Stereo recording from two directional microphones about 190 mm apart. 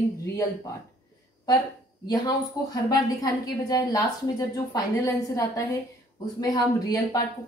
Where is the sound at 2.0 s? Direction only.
20° left (ahead or behind).